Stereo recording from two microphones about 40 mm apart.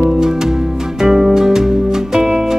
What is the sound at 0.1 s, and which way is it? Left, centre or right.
Music, centre.